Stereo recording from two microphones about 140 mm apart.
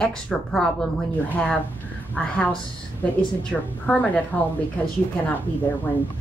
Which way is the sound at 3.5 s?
10° left (ahead or behind).